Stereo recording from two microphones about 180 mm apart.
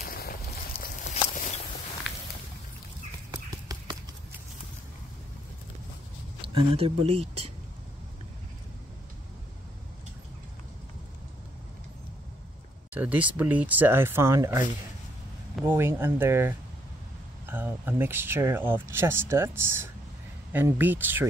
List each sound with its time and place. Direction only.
0.0 s a sound: 55° left (ahead or behind)
0.7 s a sound: 40° left (ahead or behind)
3.3 s clip-clop: 20° right (ahead or behind)
6.4 s speech: 30° right (ahead or behind)
12.9 s speech: 10° right (ahead or behind)
15.6 s speech: 15° right (ahead or behind)